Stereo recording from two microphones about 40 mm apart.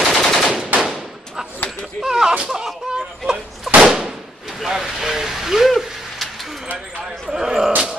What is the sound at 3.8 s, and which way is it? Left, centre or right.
Whip, centre.